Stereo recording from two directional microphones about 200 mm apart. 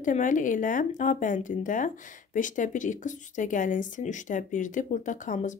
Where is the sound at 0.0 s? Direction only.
40° left (ahead or behind).